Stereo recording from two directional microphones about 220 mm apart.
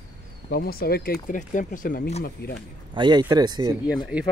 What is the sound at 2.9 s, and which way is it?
Speech, 20° right (ahead or behind).